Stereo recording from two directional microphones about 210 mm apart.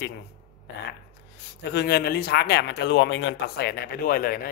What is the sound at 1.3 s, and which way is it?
Speech, 50° left (ahead or behind).